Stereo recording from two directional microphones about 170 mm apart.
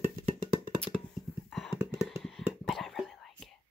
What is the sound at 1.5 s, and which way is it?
Whispering, centre (ahead or behind).